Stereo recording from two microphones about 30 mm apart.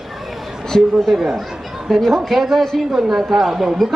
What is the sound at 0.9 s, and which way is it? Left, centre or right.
A woman's voice, centre.